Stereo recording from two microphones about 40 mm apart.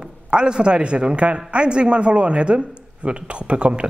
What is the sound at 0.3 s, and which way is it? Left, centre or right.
Speech, right.